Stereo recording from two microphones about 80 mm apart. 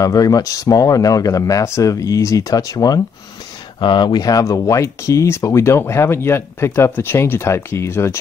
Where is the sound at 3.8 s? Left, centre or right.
Left.